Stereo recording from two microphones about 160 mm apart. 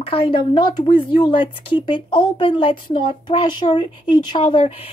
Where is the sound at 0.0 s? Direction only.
35° left (ahead or behind).